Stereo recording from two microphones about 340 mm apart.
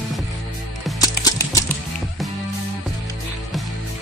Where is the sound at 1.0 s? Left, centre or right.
Centre.